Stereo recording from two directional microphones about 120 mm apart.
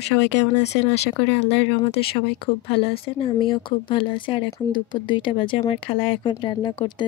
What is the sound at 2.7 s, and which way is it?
Speech, 50° left (ahead or behind).